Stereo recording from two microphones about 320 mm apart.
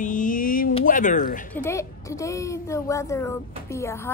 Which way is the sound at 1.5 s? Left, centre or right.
Centre.